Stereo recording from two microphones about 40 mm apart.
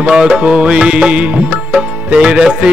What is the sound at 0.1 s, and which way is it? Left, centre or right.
Music, centre.